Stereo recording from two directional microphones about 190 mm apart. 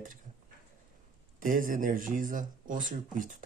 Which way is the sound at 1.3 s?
45° right (ahead or behind).